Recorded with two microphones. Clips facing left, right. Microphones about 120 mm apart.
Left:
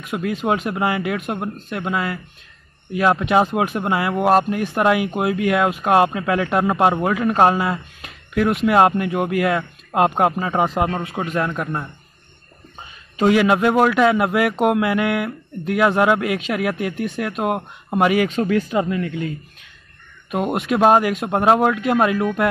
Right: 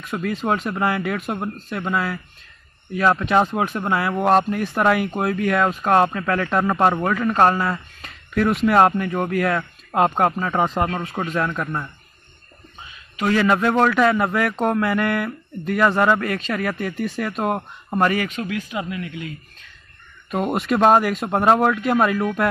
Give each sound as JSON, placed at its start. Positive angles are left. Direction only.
{"t": 0.0, "sound": "speech", "side_deg": 0}
{"t": 13.3, "sound": "speech", "side_deg": 10}
{"t": 18.3, "sound": "speech", "side_deg": 35}
{"t": 20.2, "sound": "speech", "side_deg": 5}